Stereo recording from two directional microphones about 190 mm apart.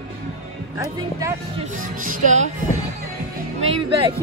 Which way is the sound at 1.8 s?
45° right (ahead or behind).